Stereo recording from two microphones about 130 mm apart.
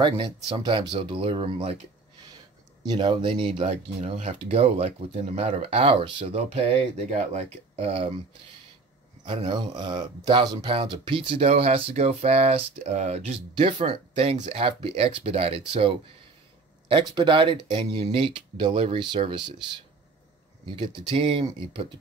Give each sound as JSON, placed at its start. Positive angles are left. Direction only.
{"t": 0.0, "sound": "speech", "side_deg": -40}
{"t": 2.8, "sound": "speech", "side_deg": -35}
{"t": 4.0, "sound": "speech", "side_deg": -60}
{"t": 6.3, "sound": "speech", "side_deg": -55}
{"t": 9.2, "sound": "speech", "side_deg": -40}
{"t": 17.1, "sound": "speech", "side_deg": -40}
{"t": 20.7, "sound": "speech", "side_deg": -40}